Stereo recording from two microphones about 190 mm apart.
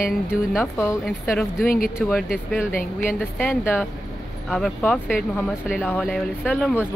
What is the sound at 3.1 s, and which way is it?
Speech, 5° left (ahead or behind).